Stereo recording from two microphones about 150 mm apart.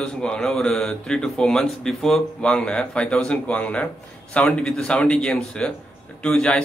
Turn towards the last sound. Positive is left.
turn(degrees=5)  # may be behind; listen again after turning